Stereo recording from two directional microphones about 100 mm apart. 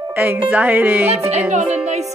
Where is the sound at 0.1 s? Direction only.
25° right (ahead or behind).